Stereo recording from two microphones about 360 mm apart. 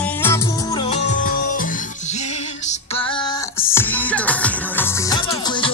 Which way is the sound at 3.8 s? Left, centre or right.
Centre.